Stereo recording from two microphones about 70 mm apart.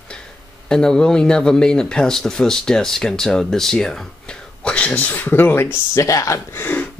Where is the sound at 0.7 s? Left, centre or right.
Centre; by 5.7 s left.